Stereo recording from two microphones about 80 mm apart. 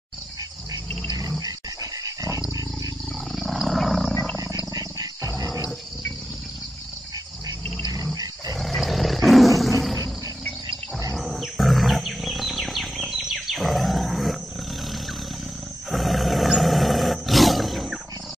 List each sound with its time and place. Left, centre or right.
1.4 s dog: right
3.3 s wild animals: centre
4.7 s wild animals: right
7.9 s roar: right
8.5 s roar: centre
11.1 s wild animals: centre
15.9 s roar: centre